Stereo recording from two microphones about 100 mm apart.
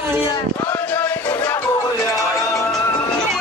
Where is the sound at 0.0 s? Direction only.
25° right (ahead or behind).